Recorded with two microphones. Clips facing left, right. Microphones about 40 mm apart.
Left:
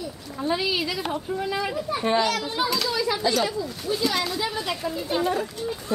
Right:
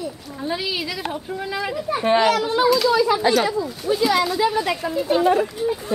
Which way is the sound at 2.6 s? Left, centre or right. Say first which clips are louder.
Right 10 dB; centre.